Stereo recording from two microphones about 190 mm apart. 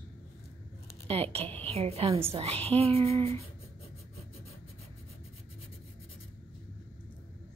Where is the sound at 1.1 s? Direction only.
30° right (ahead or behind).